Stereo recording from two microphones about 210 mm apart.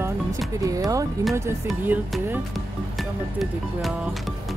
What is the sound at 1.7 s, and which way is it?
Speech, centre (ahead or behind).